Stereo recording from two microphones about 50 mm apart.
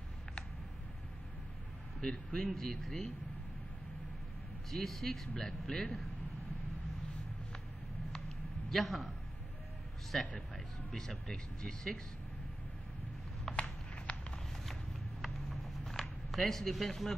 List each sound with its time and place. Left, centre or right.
2.0 s speech: centre
4.6 s a man's voice: centre
8.6 s a man's voice: centre
10.1 s speech: centre
13.5 s a sound: left
15.2 s a sound: centre